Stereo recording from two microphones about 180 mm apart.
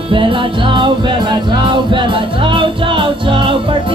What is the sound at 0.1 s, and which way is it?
Music, 30° right (ahead or behind).